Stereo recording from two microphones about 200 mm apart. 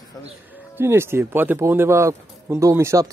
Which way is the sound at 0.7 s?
10° right (ahead or behind).